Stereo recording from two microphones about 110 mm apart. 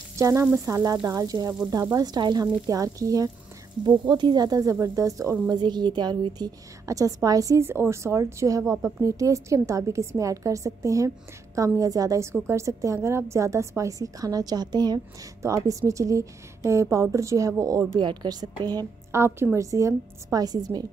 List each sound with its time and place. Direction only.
0.1 s frying: 25° right (ahead or behind)
0.7 s a woman's voice: 30° right (ahead or behind)
5.6 s a woman's voice: 45° right (ahead or behind)
15.4 s a woman's voice: 30° right (ahead or behind)
17.9 s a woman's voice: 40° right (ahead or behind)
19.1 s a woman's voice: 20° right (ahead or behind); by 20.8 s 40° right (ahead or behind)